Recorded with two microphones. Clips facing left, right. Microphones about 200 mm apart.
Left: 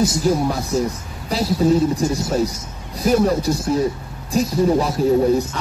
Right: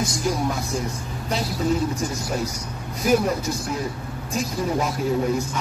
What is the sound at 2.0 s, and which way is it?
Speech, 30° left (ahead or behind).